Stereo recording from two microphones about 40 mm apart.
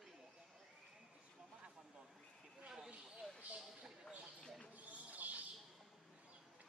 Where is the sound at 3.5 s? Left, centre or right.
Centre.